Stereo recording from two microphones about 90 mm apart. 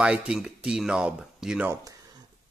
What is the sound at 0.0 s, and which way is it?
Speech, 10° right (ahead or behind).